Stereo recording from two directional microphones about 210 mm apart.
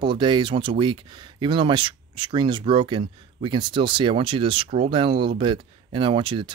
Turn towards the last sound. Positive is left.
turn(degrees=-25)  # may be behind; listen again after turning